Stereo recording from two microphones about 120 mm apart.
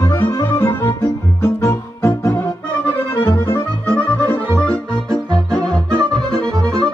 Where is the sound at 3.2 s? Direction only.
20° left (ahead or behind).